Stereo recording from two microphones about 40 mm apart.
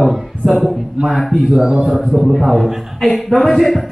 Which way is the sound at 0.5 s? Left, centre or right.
Centre.